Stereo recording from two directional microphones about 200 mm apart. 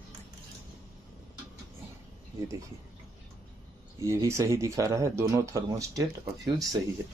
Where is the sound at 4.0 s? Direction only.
15° right (ahead or behind).